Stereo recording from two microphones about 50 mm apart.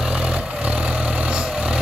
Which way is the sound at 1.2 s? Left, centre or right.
Centre.